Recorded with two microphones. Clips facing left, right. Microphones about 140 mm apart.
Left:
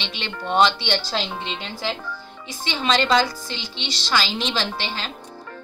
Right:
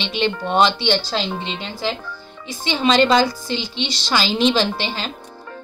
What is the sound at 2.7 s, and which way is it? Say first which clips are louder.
A woman's voice: right 5 dB; 5° right (ahead or behind).